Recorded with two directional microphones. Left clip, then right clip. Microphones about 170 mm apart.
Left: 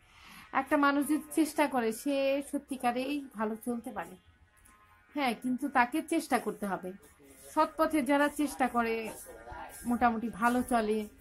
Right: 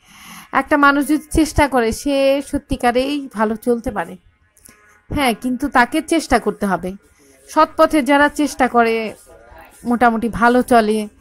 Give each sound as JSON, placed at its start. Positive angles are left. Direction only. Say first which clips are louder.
{"t": 0.1, "sound": "a woman's voice", "louder": "right 14 dB", "side_deg": -40}
{"t": 5.1, "sound": "a woman's voice", "louder": "right 14 dB", "side_deg": -40}